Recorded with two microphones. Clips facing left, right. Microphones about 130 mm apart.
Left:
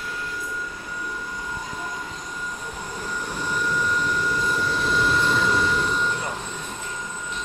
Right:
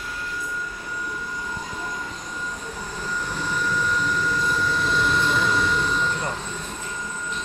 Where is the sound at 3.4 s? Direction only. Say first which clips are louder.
Left 1 dB; 10° left (ahead or behind).